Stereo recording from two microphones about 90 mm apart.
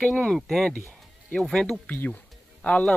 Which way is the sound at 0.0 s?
10° left (ahead or behind).